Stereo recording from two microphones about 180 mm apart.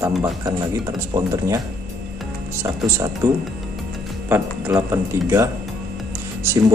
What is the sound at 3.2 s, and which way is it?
Speech, 15° right (ahead or behind).